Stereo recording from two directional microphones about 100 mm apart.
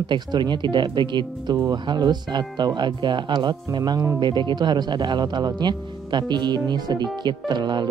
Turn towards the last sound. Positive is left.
turn(degrees=-45)  # may be behind; listen again after turning